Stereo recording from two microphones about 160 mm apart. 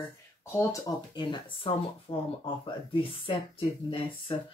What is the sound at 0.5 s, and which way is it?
Speech, 20° left (ahead or behind).